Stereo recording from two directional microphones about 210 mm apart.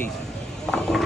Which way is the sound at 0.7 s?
Centre (ahead or behind).